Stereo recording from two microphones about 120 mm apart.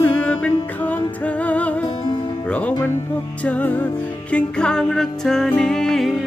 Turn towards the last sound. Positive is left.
turn(degrees=5)  # may be behind; listen again after turning